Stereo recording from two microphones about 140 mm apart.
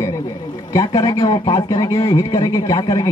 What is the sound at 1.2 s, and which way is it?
Speech, 25° left (ahead or behind).